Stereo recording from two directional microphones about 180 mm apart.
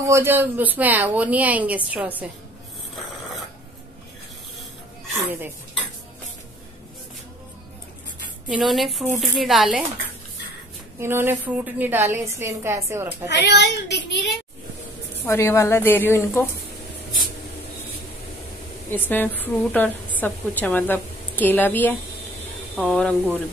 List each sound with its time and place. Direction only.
0.0 s a woman's voice: 15° right (ahead or behind)
8.5 s a woman's voice: 5° right (ahead or behind)
11.0 s a woman's voice: 15° right (ahead or behind)
13.3 s a child's voice: 70° left (ahead or behind)
15.2 s a woman's voice: 15° left (ahead or behind)
18.9 s a woman's voice: 10° left (ahead or behind)